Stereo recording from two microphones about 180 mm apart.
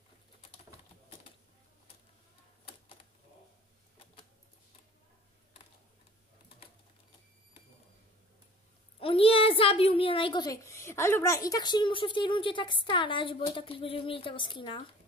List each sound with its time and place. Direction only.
9.0 s a child's voice: 30° left (ahead or behind)